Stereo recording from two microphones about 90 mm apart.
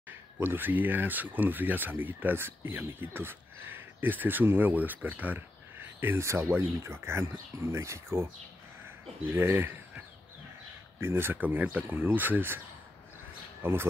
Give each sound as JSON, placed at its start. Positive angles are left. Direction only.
{"t": 0.4, "sound": "speech", "side_deg": -20}
{"t": 13.6, "sound": "speech", "side_deg": -25}